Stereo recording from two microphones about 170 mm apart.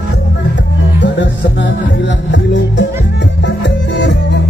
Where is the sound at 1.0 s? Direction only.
90° left.